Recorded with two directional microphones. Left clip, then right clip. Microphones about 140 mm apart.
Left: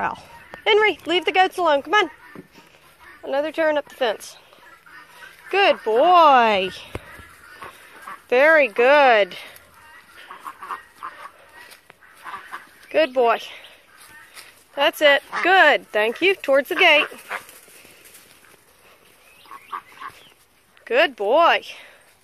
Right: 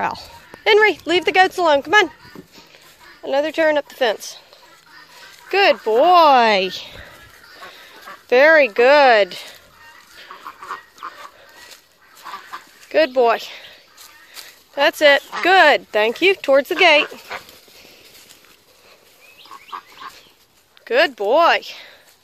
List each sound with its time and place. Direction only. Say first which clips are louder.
0.0 s speech: right 3 dB; 25° right (ahead or behind)
2.3 s music: right 2 dB; 30° right (ahead or behind)
3.2 s speech: right 4 dB; 40° right (ahead or behind)
5.5 s a child's voice: right 3 dB; 20° right (ahead or behind)
8.3 s speech: right 3 dB; 25° right (ahead or behind)
12.9 s speech: right 3 dB; 25° right (ahead or behind)
14.8 s speech: right 3 dB; 30° right (ahead or behind)
19.5 s frog: even; 15° right (ahead or behind)
20.8 s a child's voice: right 2 dB; 15° right (ahead or behind)